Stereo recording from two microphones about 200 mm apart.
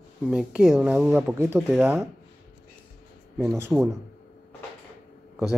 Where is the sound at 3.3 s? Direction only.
5° right (ahead or behind).